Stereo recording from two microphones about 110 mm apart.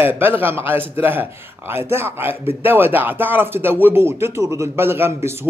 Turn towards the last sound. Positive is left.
turn(degrees=-20)  # may be behind; listen again after turning